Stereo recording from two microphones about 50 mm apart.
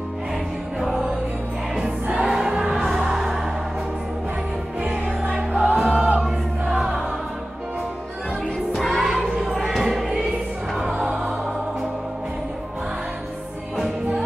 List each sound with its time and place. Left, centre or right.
0.7 s music: centre
2.1 s music: centre
5.2 s music: right
8.7 s music: centre